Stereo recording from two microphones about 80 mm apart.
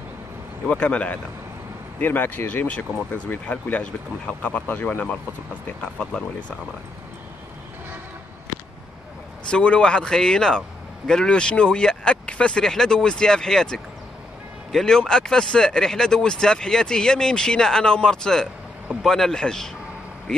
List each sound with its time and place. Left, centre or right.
0.7 s speech: centre
5.7 s speech: centre
9.5 s speech: centre